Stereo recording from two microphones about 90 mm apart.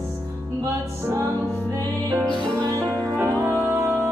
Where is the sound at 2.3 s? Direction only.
5° left (ahead or behind).